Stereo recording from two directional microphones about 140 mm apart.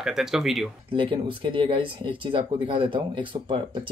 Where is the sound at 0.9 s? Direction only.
35° right (ahead or behind).